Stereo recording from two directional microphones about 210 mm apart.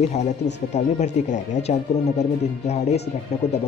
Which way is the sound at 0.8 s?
35° left (ahead or behind).